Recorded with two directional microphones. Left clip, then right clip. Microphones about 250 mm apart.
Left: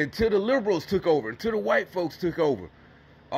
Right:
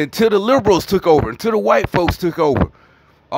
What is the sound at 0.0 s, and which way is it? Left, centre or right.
Speech, centre.